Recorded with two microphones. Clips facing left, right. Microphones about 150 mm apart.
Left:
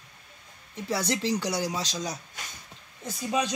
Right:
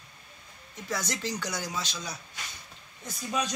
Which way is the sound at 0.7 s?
30° left (ahead or behind).